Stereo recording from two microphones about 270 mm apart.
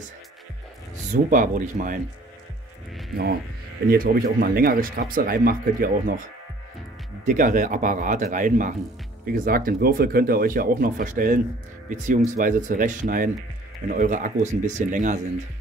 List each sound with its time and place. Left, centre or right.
1.1 s speech: right
3.9 s speech: right